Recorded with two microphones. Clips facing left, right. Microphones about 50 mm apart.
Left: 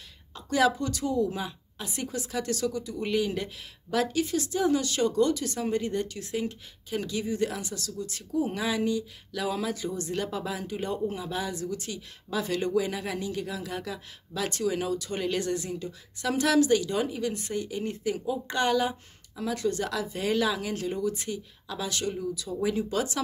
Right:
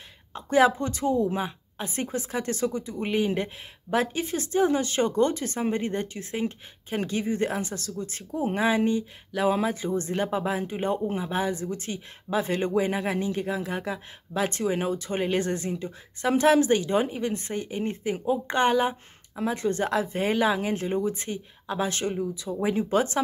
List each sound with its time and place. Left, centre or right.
0.3 s a woman's voice: right